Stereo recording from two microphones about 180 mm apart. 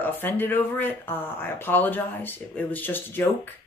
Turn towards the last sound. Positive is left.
turn(degrees=10)  # may be behind; listen again after turning